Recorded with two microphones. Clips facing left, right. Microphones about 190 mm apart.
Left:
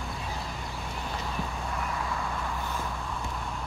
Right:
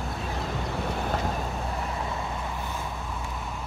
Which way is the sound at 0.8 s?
50° right (ahead or behind).